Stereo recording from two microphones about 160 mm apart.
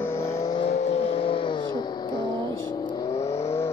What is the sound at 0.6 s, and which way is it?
Vehicle, 45° left (ahead or behind).